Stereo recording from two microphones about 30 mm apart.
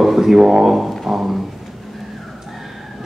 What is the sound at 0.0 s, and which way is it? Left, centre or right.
Didgeridoo, centre.